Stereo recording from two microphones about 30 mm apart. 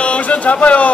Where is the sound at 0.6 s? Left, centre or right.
Left.